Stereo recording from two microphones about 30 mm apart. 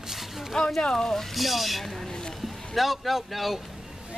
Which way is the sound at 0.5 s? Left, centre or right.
Centre.